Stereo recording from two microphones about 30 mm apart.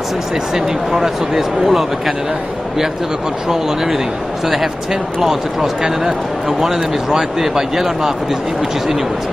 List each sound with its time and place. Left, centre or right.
0.6 s speech: centre
3.4 s speech: centre
5.2 s speech: centre